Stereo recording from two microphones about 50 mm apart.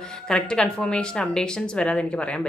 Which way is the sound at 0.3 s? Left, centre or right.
Centre.